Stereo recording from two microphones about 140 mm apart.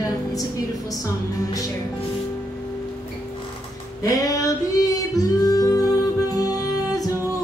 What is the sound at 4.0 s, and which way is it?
Female singing, 25° left (ahead or behind).